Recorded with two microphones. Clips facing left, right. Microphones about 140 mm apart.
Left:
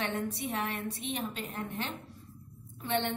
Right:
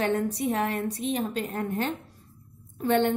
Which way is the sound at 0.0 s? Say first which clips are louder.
Right 8 dB; 40° right (ahead or behind).